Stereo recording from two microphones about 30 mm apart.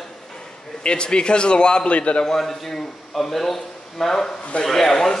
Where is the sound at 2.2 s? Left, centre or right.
Centre.